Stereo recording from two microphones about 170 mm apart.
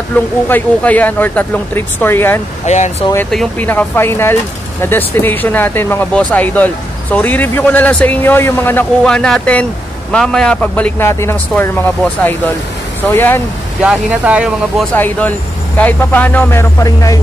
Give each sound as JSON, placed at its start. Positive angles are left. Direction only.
{"t": 0.5, "sound": "speech", "side_deg": 10}
{"t": 2.6, "sound": "speech", "side_deg": 45}
{"t": 3.3, "sound": "speech", "side_deg": 5}
{"t": 13.8, "sound": "speech", "side_deg": -5}
{"t": 15.0, "sound": "speech", "side_deg": 10}